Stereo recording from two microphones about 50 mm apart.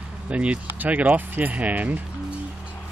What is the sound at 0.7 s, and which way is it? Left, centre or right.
Speech, right.